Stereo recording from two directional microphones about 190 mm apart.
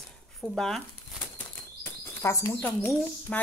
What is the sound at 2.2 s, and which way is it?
Speech, 15° left (ahead or behind).